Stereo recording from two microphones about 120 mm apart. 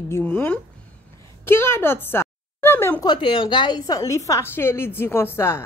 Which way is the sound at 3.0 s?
40° left (ahead or behind).